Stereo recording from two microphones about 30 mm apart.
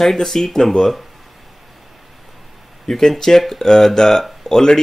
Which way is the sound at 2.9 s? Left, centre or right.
Centre.